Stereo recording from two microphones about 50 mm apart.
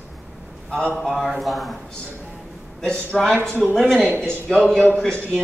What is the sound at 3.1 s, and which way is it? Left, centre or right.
A man's voice, centre.